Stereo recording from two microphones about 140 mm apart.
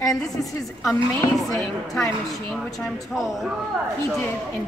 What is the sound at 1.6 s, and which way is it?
Speech, 15° left (ahead or behind).